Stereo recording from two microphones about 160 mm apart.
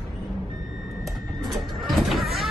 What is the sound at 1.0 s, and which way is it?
Sliding door, centre (ahead or behind).